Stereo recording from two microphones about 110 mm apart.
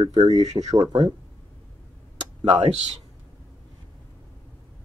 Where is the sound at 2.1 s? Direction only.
80° right.